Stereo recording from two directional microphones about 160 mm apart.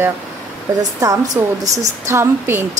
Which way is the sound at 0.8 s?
20° right (ahead or behind).